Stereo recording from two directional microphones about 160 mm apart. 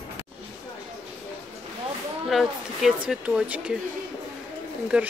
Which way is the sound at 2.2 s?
Centre (ahead or behind).